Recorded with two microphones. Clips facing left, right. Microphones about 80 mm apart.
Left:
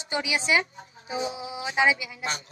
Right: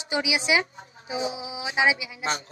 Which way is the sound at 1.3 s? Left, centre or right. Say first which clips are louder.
Even; left.